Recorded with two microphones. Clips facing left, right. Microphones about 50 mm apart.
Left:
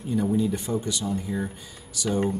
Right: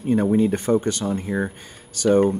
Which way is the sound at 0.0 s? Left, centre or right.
Right.